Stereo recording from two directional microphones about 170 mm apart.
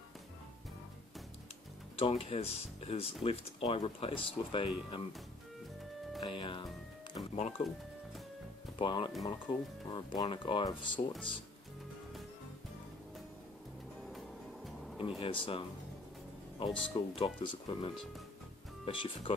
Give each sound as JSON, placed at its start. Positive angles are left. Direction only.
{"t": 2.0, "sound": "speech", "side_deg": 35}
{"t": 6.2, "sound": "speech", "side_deg": 30}
{"t": 7.3, "sound": "speech", "side_deg": 45}
{"t": 8.7, "sound": "speech", "side_deg": 25}
{"t": 14.1, "sound": "music", "side_deg": 0}
{"t": 15.0, "sound": "speech", "side_deg": 30}